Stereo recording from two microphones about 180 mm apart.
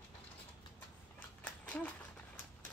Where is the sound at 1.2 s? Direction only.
10° left (ahead or behind).